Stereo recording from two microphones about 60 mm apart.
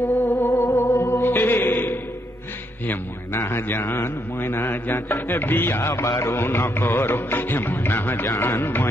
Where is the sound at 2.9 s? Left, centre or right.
Left.